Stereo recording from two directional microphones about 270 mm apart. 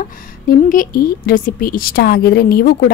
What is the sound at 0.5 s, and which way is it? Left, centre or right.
A woman's voice, left.